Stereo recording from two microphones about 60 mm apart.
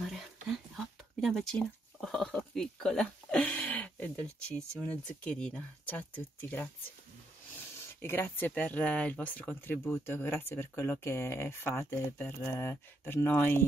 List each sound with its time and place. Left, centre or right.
0.0 s a sound: centre
2.5 s speech: centre
5.9 s speech: left
8.0 s speech: left
8.5 s speech: left